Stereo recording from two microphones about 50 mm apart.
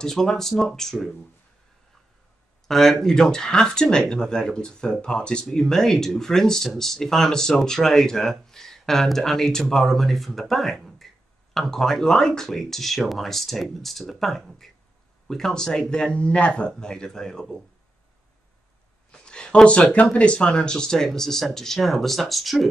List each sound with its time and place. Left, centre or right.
0.0 s speech: centre
2.7 s speech: centre
19.1 s speech: centre